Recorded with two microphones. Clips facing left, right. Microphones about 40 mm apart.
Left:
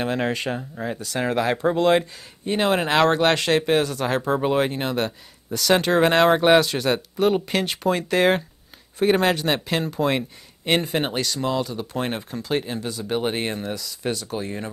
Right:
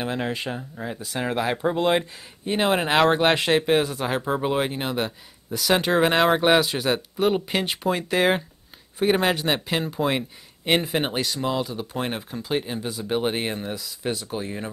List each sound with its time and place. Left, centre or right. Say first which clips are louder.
0.0 s speech: left 3 dB; centre
0.9 s speech: left 3 dB; centre
13.7 s speech: left 1 dB; centre